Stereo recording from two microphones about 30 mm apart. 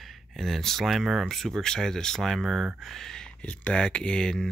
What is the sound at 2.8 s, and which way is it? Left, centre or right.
Speech, centre.